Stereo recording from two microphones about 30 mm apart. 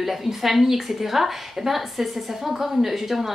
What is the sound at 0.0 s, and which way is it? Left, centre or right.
A woman's voice, centre.